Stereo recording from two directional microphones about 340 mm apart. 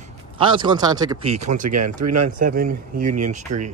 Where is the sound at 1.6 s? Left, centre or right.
Right.